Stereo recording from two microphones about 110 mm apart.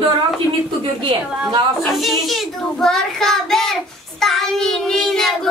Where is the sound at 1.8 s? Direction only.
Centre (ahead or behind).